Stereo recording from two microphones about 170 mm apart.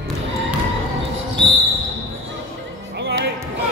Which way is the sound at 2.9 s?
90° right.